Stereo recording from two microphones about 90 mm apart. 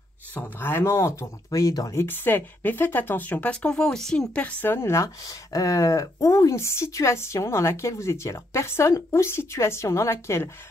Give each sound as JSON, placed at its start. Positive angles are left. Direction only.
{"t": 0.3, "sound": "speech", "side_deg": 25}
{"t": 2.0, "sound": "speech", "side_deg": 25}
{"t": 4.4, "sound": "speech", "side_deg": 15}